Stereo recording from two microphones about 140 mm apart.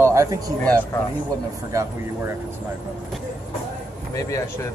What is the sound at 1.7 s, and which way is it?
Speech, 20° right (ahead or behind).